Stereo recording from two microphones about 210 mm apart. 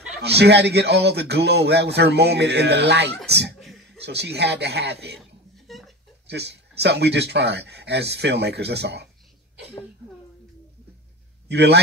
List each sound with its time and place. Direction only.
0.2 s speech: 50° right (ahead or behind)
3.5 s a sound: centre (ahead or behind)
4.0 s speech: 55° right (ahead or behind)
5.7 s chuckle: centre (ahead or behind)
6.2 s speech: 55° right (ahead or behind)
11.4 s a man's voice: 55° right (ahead or behind)